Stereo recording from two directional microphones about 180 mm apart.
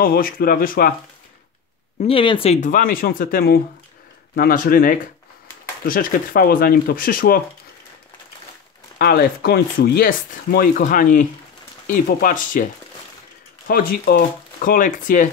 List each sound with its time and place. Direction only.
0.0 s speech: 55° left (ahead or behind)
2.0 s speech: 30° left (ahead or behind); by 7.4 s 50° left (ahead or behind)
8.9 s speech: 55° left (ahead or behind)
13.7 s speech: 55° left (ahead or behind)